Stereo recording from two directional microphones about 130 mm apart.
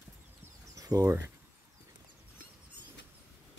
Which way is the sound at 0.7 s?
25° right (ahead or behind).